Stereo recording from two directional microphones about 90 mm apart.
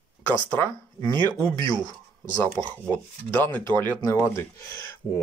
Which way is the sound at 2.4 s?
20° left (ahead or behind).